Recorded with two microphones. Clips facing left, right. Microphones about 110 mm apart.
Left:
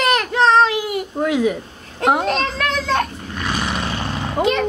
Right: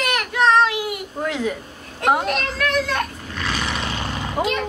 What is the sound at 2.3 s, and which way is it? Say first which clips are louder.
Vehicle: left 2 dB; 30° left (ahead or behind).